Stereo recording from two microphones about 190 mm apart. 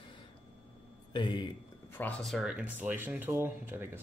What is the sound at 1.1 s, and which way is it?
Speech, 25° left (ahead or behind).